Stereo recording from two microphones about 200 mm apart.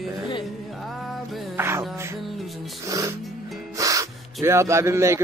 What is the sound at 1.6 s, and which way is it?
Speech, 10° right (ahead or behind).